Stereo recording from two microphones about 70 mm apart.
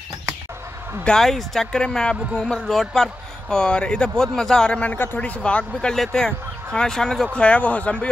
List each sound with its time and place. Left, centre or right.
1.0 s speech: centre
4.9 s speech: left; by 7.2 s centre
7.3 s speech: centre